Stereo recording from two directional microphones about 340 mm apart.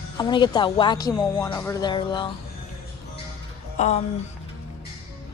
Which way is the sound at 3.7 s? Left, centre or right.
Centre.